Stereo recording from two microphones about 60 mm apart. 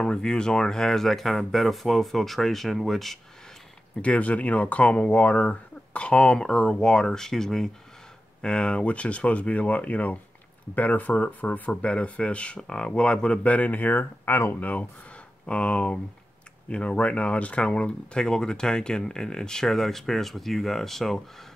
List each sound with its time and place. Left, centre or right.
0.0 s speech: centre
4.0 s speech: left; by 21.2 s centre